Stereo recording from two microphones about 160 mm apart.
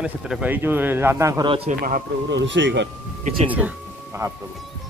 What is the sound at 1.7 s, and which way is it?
Speech, 65° right (ahead or behind).